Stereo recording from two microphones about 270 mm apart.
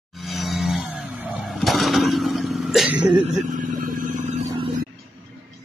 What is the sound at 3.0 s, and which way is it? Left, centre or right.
Speech, centre.